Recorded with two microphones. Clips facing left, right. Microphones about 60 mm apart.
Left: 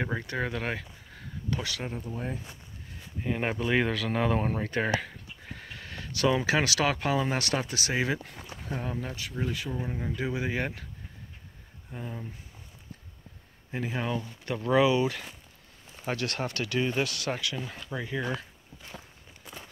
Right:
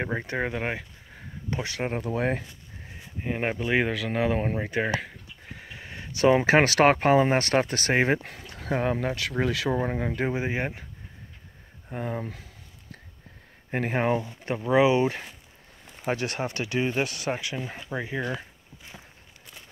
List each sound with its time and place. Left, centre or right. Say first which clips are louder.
0.0 s speech: right 3 dB; right
1.5 s speech: right 3 dB; right
1.9 s speech: right 9 dB; right
3.3 s speech: right 2 dB; centre
4.6 s a sound: right 1 dB; centre
6.3 s speech: right 7 dB; right
8.3 s speech: right 7 dB; right
9.8 s speech: right 5 dB; right
10.3 s speech: right 2 dB; right
11.9 s speech: right 7 dB; right
13.7 s speech: right 7 dB; right
14.2 s speech: right 2 dB; right
18.3 s a sound: right 1 dB; centre
19.4 s walk: left 4 dB; centre